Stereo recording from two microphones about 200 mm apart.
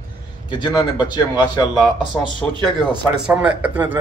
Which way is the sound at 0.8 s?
20° left (ahead or behind).